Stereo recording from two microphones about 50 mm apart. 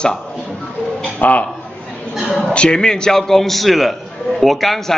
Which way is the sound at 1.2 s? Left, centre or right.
Left.